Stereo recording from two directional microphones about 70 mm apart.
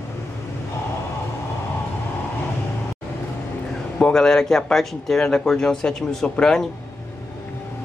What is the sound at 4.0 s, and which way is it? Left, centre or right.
Speech, centre.